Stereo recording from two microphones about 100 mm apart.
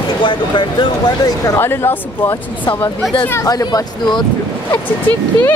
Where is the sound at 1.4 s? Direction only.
25° left (ahead or behind).